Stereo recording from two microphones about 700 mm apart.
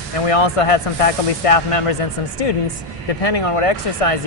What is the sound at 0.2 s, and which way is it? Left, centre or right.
Speech, left.